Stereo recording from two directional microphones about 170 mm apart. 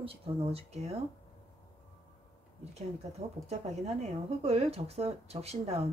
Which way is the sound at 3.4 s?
40° right (ahead or behind).